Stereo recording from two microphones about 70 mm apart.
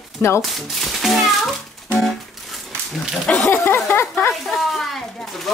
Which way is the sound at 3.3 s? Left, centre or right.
Centre.